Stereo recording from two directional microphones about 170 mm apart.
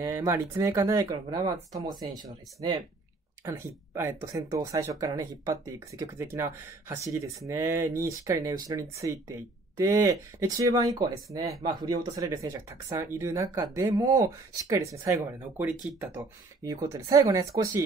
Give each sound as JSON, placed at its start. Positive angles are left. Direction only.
{"t": 0.0, "sound": "speech", "side_deg": -15}
{"t": 3.4, "sound": "speech", "side_deg": -15}